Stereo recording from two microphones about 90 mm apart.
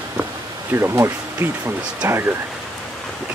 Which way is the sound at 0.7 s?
30° right (ahead or behind).